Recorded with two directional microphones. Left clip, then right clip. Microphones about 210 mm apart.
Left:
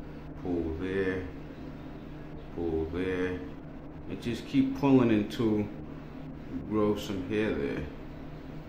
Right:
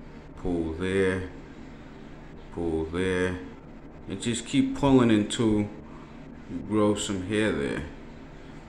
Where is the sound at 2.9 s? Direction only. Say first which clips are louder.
Right 4 dB; 20° right (ahead or behind).